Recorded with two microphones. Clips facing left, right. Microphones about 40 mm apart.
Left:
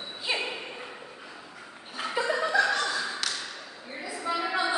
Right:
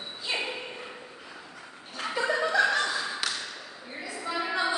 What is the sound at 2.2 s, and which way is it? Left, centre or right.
Chuckle, centre.